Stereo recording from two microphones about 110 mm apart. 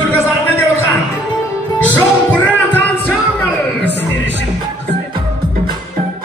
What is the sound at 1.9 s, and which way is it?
Music, 15° left (ahead or behind).